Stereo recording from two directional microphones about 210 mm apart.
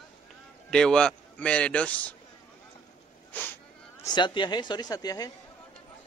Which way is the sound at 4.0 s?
20° left (ahead or behind).